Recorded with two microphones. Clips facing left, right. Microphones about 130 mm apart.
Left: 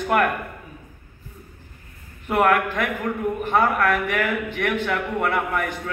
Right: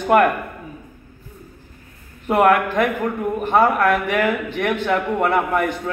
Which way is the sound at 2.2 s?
20° right (ahead or behind).